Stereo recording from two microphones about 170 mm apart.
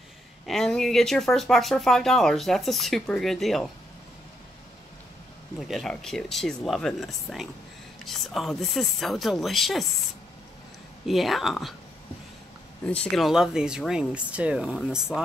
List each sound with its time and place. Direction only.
0.5 s speech: 5° left (ahead or behind)
5.6 s speech: centre (ahead or behind)
11.1 s speech: centre (ahead or behind)
12.8 s speech: 5° left (ahead or behind)